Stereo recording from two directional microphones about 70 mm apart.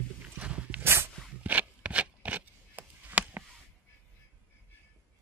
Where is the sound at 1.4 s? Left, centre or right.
Right.